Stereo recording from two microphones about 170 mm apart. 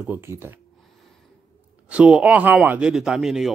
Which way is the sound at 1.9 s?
5° right (ahead or behind).